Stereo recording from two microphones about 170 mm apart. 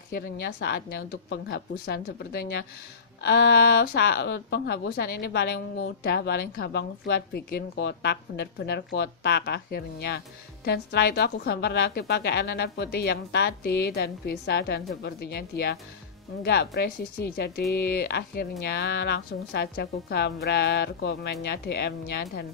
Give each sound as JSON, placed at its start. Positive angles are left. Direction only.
{"t": 0.1, "sound": "a woman's voice", "side_deg": 80}